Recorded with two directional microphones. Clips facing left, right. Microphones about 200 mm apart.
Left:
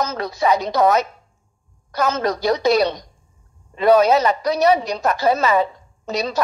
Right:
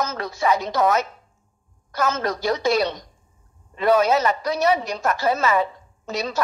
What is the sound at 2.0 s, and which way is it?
A woman's voice, 35° left (ahead or behind).